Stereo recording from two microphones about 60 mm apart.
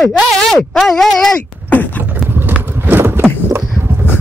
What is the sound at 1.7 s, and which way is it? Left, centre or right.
Beatboxing, left.